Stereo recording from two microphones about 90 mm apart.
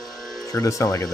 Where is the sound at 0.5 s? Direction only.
35° left (ahead or behind).